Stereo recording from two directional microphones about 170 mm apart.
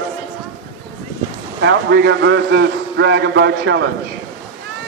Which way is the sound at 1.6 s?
90° right.